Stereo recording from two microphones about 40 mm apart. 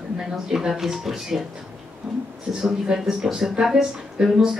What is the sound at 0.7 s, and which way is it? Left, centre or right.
Speech, centre.